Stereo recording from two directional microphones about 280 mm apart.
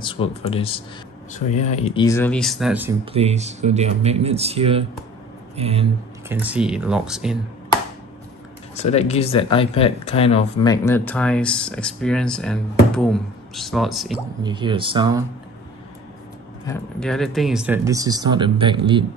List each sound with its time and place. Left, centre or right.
0.0 s speech: centre
2.0 s speech: centre
3.1 s speech: right
6.2 s speech: centre
8.7 s speech: left; by 14.1 s centre
14.4 s speech: centre
16.6 s speech: centre